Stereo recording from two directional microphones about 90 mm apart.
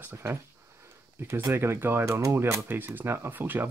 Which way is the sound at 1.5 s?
25° right (ahead or behind).